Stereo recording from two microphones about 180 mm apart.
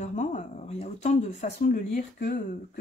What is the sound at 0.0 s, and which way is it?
Speech, 40° left (ahead or behind).